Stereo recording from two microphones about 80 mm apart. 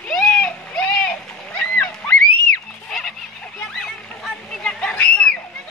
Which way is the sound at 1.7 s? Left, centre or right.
Left.